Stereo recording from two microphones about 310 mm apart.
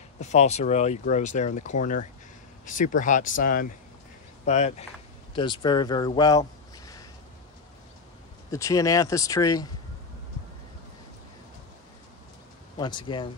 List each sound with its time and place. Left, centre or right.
0.2 s speech: left
8.5 s speech: centre
12.7 s speech: centre